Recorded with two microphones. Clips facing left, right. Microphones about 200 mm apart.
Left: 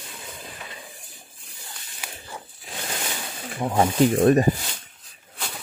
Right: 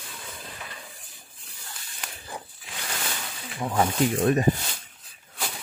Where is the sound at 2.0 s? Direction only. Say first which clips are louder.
Left 1 dB; 5° left (ahead or behind).